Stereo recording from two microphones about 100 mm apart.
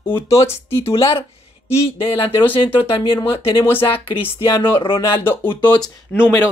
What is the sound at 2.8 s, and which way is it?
Speech, 60° left (ahead or behind).